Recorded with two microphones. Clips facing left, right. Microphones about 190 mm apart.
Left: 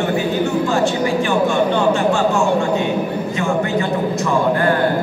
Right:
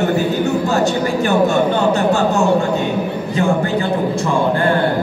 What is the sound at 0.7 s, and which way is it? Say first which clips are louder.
A man's voice: right 1 dB; 40° right (ahead or behind).